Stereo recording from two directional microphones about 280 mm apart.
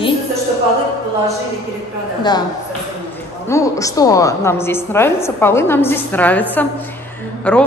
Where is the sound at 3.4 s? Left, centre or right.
Centre.